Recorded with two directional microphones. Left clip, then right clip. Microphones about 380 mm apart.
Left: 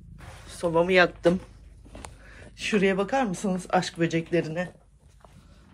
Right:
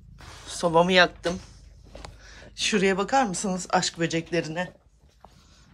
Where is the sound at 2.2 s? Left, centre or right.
Centre.